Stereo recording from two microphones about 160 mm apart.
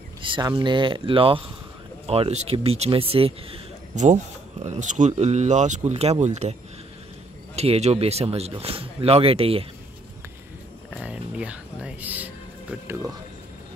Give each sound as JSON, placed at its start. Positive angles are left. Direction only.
{"t": 0.2, "sound": "speech", "side_deg": -30}
{"t": 7.5, "sound": "speech", "side_deg": -40}
{"t": 11.0, "sound": "a sound", "side_deg": -5}